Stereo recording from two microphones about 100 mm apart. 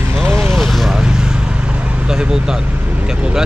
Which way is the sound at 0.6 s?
Centre (ahead or behind).